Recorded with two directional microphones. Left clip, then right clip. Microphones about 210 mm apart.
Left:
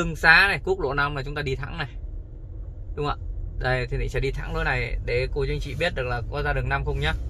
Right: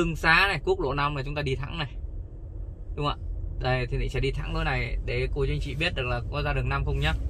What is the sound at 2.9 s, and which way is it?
A man's voice, 25° left (ahead or behind).